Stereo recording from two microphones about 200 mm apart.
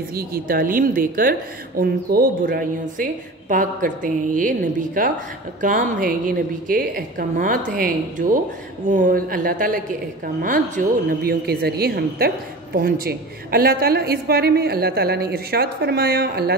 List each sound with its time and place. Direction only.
0.1 s a woman's voice: 50° right (ahead or behind)